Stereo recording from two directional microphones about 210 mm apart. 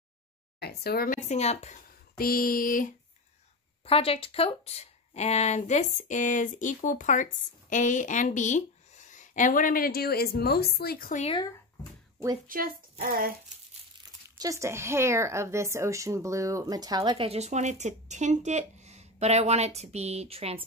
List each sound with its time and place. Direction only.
0.6 s a woman's voice: 50° left (ahead or behind); by 1.8 s 30° left (ahead or behind)
2.1 s a sound: 45° left (ahead or behind)
3.8 s a woman's voice: 25° left (ahead or behind)
12.4 s speech: 40° right (ahead or behind)
14.4 s speech: 15° right (ahead or behind)